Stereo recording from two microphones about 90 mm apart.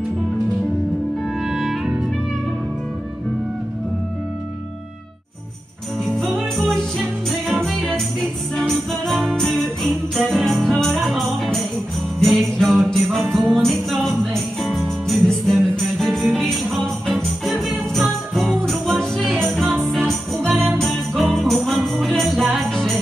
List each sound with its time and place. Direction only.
1.5 s music: centre (ahead or behind)
6.0 s jingle bell: centre (ahead or behind)
7.2 s music: centre (ahead or behind)
12.2 s jingle bell: centre (ahead or behind)
19.6 s music: 20° right (ahead or behind)
19.9 s music: centre (ahead or behind)